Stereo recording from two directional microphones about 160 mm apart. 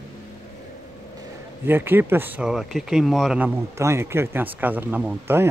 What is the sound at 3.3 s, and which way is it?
A man's voice, 15° right (ahead or behind).